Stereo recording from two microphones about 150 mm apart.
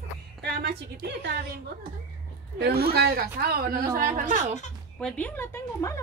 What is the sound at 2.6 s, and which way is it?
Speech, 90° right.